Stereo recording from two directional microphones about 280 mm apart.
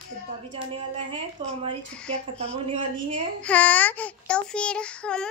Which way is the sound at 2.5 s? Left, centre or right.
Centre.